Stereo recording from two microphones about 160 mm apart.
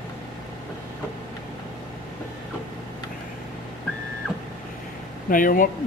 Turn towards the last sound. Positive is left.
turn(degrees=60)  # may be behind; listen again after turning